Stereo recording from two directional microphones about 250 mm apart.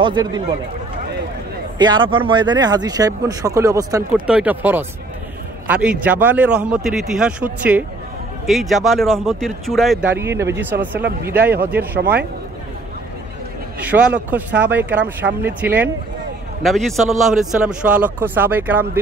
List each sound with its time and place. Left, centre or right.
0.0 s speech: centre
1.8 s speech: centre
12.0 s a man's voice: right
14.3 s speech: centre